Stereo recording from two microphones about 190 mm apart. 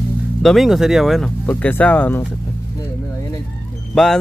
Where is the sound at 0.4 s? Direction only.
Centre (ahead or behind).